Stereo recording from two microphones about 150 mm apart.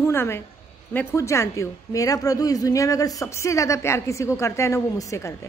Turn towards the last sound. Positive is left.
turn(degrees=20)  # may be behind; listen again after turning